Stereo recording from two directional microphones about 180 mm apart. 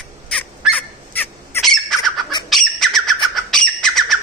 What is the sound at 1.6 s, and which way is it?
Squawk, centre (ahead or behind).